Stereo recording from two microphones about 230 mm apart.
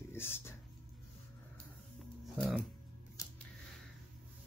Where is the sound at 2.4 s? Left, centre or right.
Centre.